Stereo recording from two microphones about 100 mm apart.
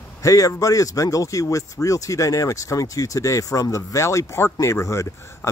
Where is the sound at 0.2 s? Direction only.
35° left (ahead or behind).